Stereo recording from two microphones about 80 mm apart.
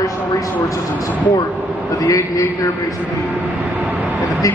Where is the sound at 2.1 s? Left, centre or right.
Left.